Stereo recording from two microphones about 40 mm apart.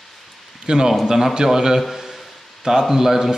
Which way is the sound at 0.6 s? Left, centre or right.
Centre.